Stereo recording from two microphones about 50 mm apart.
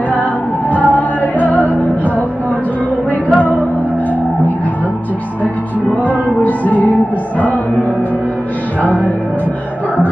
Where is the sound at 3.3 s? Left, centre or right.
Left.